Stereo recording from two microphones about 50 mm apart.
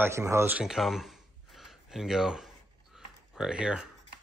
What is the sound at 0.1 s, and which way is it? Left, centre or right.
Speech, right.